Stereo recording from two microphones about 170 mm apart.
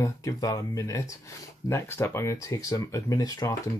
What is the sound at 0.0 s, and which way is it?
Speech, 20° left (ahead or behind).